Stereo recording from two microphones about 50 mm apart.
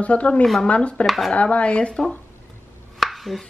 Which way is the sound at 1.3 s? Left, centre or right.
Left.